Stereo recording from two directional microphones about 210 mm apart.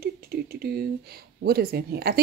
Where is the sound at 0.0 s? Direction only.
45° right (ahead or behind).